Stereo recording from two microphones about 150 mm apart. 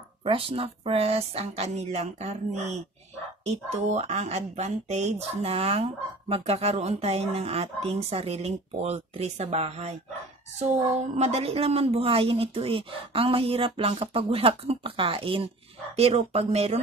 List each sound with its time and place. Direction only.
0.2 s a woman's voice: 35° right (ahead or behind)